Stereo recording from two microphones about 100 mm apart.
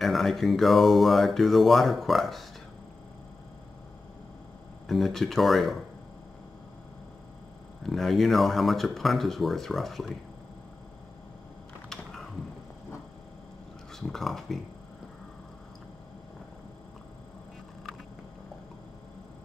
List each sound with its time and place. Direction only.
0.0 s speech: centre (ahead or behind)
4.8 s speech: centre (ahead or behind)
7.8 s speech: centre (ahead or behind)
11.9 s mechanisms: 5° left (ahead or behind)
13.9 s speech: 5° left (ahead or behind)